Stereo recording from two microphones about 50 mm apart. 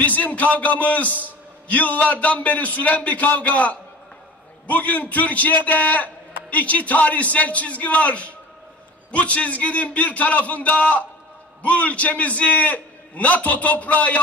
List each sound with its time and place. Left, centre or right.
0.0 s a man's voice: left